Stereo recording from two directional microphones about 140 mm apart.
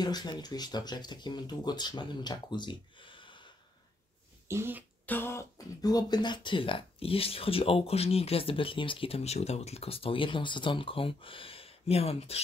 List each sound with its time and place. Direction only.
0.0 s speech: 30° left (ahead or behind)
4.5 s speech: 15° right (ahead or behind)
5.0 s speech: 15° left (ahead or behind); by 12.4 s 45° left (ahead or behind)